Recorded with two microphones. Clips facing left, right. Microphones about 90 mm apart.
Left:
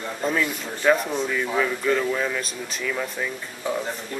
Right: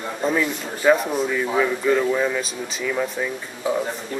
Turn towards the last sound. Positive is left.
turn(degrees=-10)  # may be behind; listen again after turning